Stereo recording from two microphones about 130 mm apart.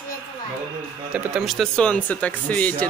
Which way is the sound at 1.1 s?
10° right (ahead or behind).